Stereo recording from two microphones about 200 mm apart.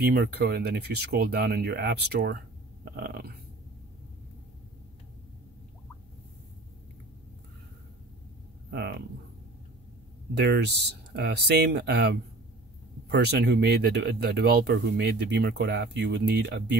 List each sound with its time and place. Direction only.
0.0 s speech: 50° right (ahead or behind)
8.6 s a sound: 55° right (ahead or behind)
10.3 s speech: 55° right (ahead or behind)